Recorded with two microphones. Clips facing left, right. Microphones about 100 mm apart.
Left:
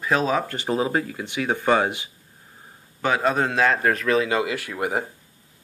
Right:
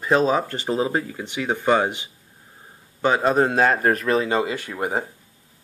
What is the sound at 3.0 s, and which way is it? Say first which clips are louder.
A man's voice: right 3 dB; 30° right (ahead or behind).